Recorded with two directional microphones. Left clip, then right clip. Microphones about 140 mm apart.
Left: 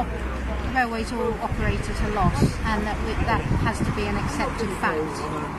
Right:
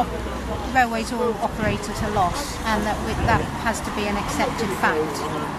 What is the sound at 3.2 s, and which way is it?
Speech, 15° right (ahead or behind).